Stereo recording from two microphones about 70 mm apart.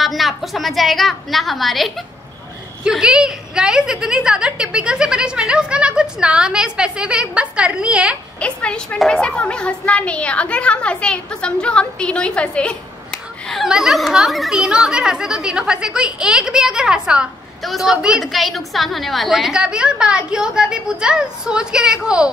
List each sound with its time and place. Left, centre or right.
0.0 s a woman's voice: centre
2.8 s a woman's voice: centre
8.4 s a woman's voice: centre
13.7 s a woman's voice: centre